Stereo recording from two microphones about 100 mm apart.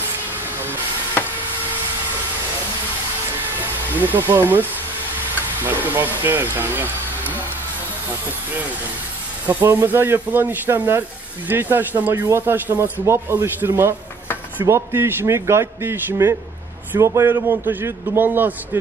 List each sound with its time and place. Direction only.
3.9 s speech: 20° right (ahead or behind)
9.6 s speech: 30° right (ahead or behind)